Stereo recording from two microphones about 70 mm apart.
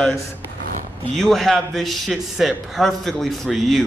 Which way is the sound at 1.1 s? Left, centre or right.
Centre.